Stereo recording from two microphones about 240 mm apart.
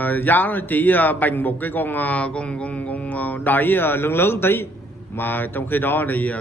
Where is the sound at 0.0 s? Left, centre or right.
Centre.